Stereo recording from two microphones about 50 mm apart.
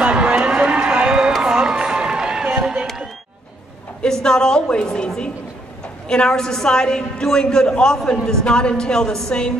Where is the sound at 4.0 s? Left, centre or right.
Centre.